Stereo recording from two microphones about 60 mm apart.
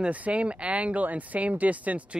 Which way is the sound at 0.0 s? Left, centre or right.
Right.